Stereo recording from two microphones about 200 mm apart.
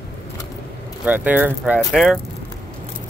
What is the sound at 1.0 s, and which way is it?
Speech, 10° right (ahead or behind).